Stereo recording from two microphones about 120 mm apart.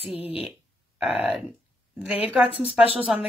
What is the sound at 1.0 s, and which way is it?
Speech, 5° right (ahead or behind).